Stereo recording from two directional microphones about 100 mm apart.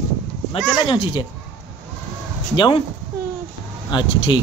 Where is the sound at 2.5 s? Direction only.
55° left (ahead or behind).